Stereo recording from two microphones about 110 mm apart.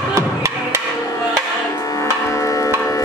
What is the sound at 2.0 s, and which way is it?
Music, 25° left (ahead or behind).